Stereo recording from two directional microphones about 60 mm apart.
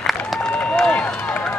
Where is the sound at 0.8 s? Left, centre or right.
Centre.